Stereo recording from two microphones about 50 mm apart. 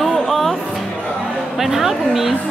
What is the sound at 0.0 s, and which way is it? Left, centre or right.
Music, centre.